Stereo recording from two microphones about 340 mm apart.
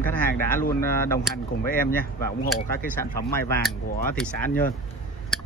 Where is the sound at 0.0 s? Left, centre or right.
Centre.